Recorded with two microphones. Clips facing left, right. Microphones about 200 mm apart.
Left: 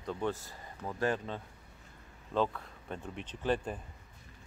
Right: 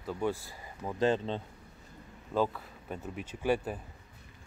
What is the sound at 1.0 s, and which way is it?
Speech, 25° right (ahead or behind).